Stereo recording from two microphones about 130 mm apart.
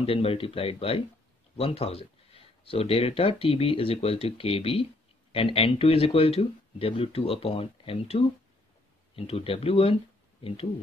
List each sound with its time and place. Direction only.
0.0 s speech: 45° left (ahead or behind)